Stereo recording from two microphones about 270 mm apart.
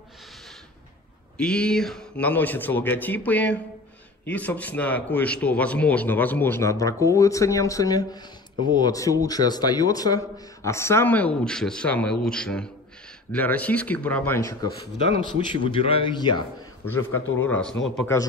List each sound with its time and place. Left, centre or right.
1.4 s a man's voice: centre
15.0 s a man's voice: centre
17.4 s a man's voice: centre